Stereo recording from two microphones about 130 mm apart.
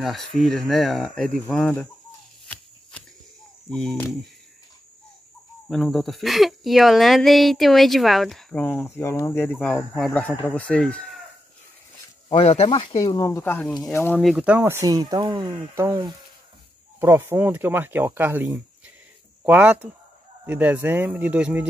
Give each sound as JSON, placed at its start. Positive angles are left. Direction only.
{"t": 0.0, "sound": "speech", "side_deg": 0}
{"t": 2.4, "sound": "a sound", "side_deg": 10}
{"t": 3.7, "sound": "speech", "side_deg": 5}
{"t": 5.7, "sound": "speech", "side_deg": 0}
{"t": 12.3, "sound": "speech", "side_deg": 50}
{"t": 14.2, "sound": "speech", "side_deg": -10}
{"t": 14.9, "sound": "speech", "side_deg": -30}
{"t": 15.8, "sound": "speech", "side_deg": -20}